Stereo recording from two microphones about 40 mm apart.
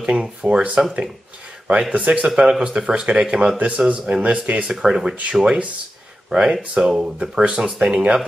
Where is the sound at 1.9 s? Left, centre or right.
Right.